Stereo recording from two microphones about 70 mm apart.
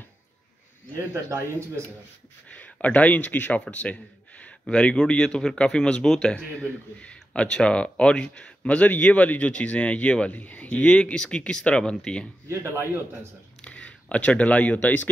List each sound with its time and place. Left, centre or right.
2.4 s speech: centre
12.4 s a man's voice: right
13.6 s speech: centre